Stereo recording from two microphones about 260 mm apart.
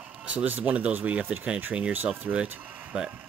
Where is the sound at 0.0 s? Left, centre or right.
Centre.